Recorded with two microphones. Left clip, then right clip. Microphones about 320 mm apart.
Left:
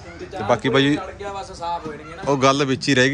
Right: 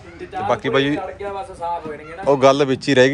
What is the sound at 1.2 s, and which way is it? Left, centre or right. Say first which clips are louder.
Speech: right 3 dB; right.